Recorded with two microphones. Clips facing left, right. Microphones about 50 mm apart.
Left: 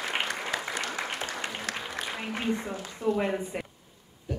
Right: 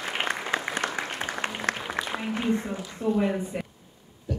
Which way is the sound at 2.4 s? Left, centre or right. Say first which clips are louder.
Right 3 dB; centre.